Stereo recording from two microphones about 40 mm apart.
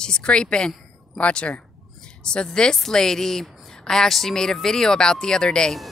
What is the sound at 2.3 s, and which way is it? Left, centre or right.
A woman's voice, centre.